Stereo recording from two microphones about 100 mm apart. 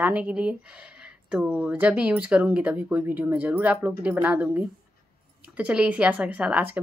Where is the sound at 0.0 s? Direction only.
15° right (ahead or behind).